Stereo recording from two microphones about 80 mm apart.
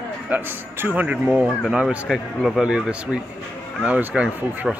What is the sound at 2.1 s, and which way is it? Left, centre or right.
Speech, centre.